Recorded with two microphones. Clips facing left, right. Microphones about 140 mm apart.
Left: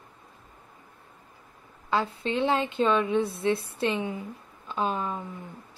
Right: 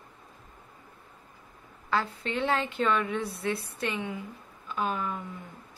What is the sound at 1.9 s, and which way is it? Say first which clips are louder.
Speech: left 3 dB; 20° left (ahead or behind).